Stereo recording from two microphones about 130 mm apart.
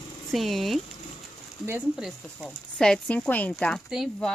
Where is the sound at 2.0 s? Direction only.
5° right (ahead or behind).